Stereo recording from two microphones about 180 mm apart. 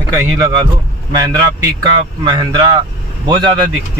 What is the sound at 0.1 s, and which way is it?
A man's voice, 15° right (ahead or behind).